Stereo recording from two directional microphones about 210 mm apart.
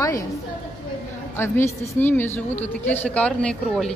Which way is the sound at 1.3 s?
10° left (ahead or behind).